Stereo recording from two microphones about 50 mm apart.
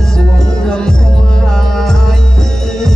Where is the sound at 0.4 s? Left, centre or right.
Centre.